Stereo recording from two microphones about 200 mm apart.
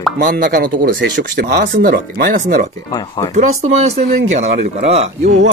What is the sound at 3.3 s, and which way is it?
Speech, 35° right (ahead or behind).